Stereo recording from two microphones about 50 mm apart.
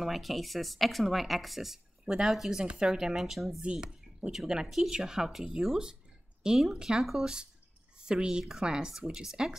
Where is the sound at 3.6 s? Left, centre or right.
Centre.